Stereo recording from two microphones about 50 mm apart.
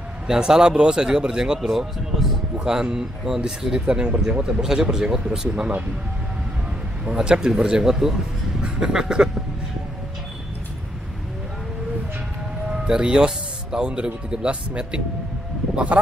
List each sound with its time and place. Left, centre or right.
0.3 s speech: centre
2.5 s speech: centre
7.1 s speech: centre
8.5 s vehicle: centre
12.6 s speech: centre